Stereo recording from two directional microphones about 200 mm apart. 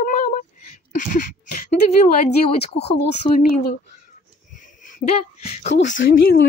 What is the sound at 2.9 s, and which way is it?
Speech, 35° left (ahead or behind).